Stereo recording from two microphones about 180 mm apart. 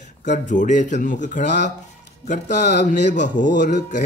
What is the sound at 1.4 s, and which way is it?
Speech, 70° left (ahead or behind).